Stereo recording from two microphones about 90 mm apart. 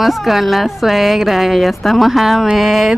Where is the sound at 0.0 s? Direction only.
Centre (ahead or behind).